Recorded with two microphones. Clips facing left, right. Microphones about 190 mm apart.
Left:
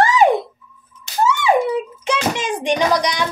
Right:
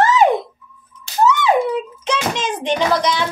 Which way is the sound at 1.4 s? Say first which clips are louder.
Even; 15° left (ahead or behind).